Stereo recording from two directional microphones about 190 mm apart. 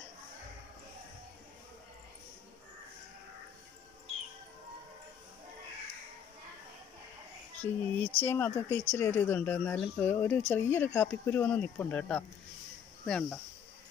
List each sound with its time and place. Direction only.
7.6 s speech: 10° left (ahead or behind)